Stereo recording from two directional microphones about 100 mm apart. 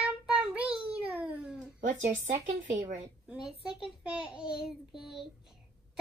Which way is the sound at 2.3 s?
90° right.